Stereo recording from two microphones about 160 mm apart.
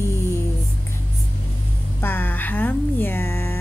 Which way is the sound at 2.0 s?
10° left (ahead or behind).